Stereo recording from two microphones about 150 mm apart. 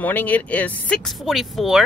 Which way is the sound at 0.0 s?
10° left (ahead or behind).